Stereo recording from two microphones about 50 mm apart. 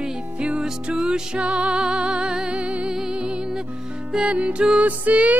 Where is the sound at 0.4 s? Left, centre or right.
Centre.